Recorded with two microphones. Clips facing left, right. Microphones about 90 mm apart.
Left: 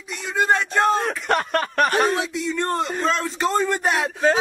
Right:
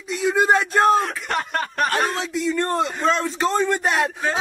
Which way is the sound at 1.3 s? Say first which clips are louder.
Left 5 dB; 55° left (ahead or behind).